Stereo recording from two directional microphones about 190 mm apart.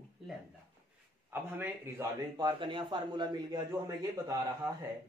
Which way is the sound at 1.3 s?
10° right (ahead or behind).